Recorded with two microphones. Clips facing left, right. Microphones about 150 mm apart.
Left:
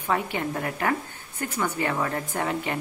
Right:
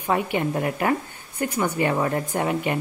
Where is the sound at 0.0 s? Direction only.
15° right (ahead or behind).